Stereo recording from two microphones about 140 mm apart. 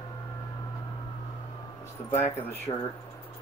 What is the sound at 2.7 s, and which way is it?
Speech, 35° left (ahead or behind).